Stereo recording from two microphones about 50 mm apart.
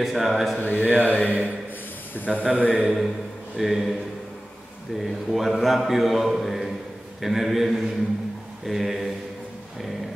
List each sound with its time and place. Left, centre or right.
0.0 s a man's voice: centre
0.6 s speech: left
2.4 s speech: right
3.5 s a man's voice: centre
5.0 s a man's voice: centre